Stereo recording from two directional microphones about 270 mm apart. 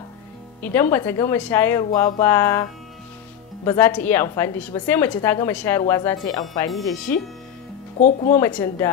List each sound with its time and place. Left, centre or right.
0.6 s a woman's voice: centre
3.6 s a woman's voice: centre
6.7 s speech: centre
8.0 s speech: left
8.4 s a woman's voice: centre